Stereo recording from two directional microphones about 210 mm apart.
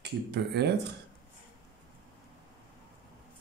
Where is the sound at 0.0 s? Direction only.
50° right (ahead or behind).